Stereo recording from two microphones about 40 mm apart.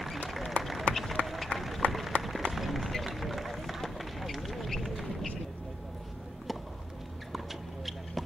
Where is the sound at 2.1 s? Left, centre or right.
Left.